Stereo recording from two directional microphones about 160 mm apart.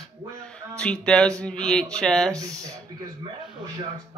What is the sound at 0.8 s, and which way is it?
Speech, 5° left (ahead or behind).